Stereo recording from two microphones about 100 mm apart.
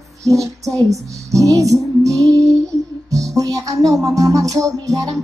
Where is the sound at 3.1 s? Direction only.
35° right (ahead or behind).